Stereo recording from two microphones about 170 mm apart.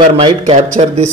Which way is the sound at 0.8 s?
35° right (ahead or behind).